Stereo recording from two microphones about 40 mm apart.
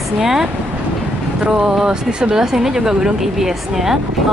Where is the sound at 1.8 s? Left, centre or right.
Centre.